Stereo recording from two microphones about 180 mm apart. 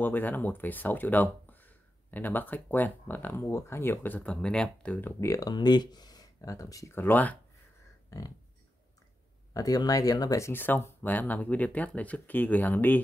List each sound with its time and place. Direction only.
0.0 s speech: 10° left (ahead or behind)
9.5 s speech: 20° left (ahead or behind)